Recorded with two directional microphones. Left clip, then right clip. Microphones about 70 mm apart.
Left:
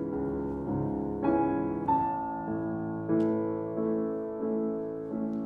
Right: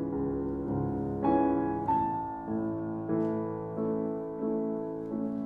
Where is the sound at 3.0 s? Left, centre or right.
Left.